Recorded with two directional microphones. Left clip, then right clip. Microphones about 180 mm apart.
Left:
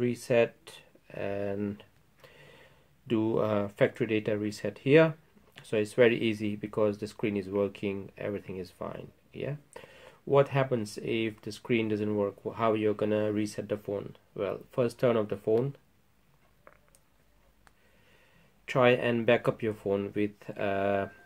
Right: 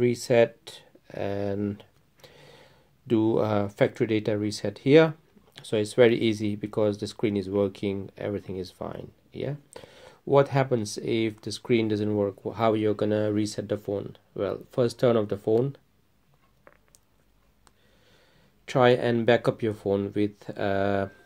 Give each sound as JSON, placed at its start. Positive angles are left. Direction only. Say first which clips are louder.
{"t": 0.0, "sound": "speech", "louder": "right 5 dB", "side_deg": -35}
{"t": 16.7, "sound": "a sound", "louder": "right 1 dB", "side_deg": -40}
{"t": 18.7, "sound": "speech", "louder": "right 3 dB", "side_deg": -30}